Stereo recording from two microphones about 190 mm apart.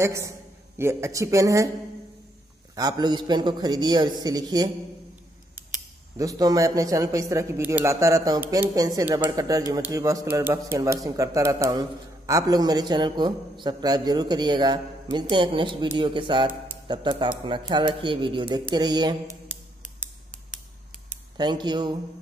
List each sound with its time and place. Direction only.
0.0 s a man's voice: 15° right (ahead or behind)
2.7 s a man's voice: 20° right (ahead or behind)
6.1 s a man's voice: 20° right (ahead or behind)
21.4 s a man's voice: 20° right (ahead or behind)